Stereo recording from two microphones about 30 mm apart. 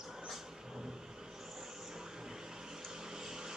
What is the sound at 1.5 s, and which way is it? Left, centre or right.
Vehicle, centre.